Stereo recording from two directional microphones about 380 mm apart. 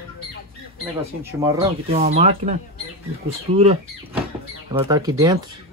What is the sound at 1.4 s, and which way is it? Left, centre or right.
Speech, centre.